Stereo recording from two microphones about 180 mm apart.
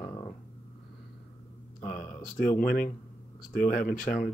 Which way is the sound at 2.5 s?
55° left (ahead or behind).